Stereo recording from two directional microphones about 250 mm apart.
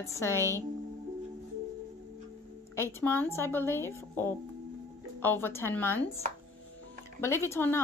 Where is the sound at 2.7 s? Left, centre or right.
Centre.